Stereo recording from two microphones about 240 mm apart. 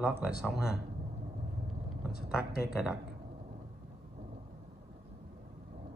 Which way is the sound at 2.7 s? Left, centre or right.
Centre.